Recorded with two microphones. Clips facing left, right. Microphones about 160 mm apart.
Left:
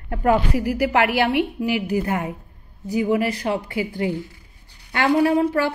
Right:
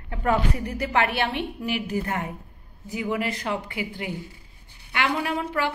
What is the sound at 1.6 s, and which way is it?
Speech, 20° left (ahead or behind).